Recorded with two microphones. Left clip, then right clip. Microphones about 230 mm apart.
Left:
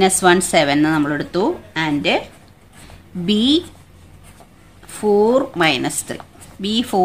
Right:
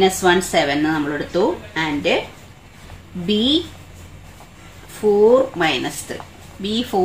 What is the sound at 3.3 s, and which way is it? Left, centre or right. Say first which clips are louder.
Speech: left 1 dB; left.